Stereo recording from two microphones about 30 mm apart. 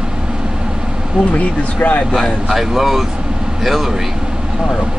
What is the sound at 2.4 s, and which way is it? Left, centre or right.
Speech, centre.